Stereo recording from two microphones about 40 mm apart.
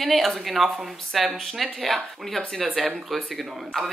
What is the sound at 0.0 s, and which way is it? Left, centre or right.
Speech, centre.